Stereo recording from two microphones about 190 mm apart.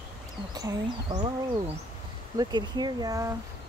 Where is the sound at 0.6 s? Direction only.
20° right (ahead or behind).